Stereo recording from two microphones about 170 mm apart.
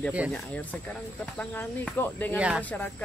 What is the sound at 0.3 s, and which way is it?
Speech, 10° left (ahead or behind).